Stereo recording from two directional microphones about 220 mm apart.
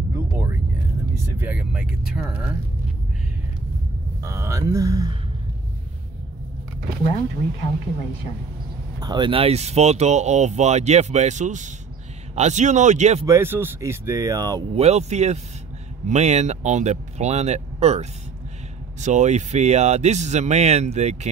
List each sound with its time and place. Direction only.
1.1 s speech: 10° right (ahead or behind)
4.2 s speech: 15° right (ahead or behind)
7.0 s speech: 30° left (ahead or behind)
9.0 s speech: 20° right (ahead or behind)
13.3 s speech: 10° right (ahead or behind)
14.8 s speech: 30° right (ahead or behind)